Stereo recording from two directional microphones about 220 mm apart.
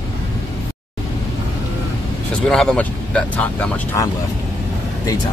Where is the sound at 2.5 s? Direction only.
5° left (ahead or behind).